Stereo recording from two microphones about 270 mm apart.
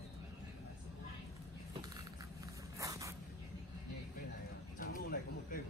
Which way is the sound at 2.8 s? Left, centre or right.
Centre.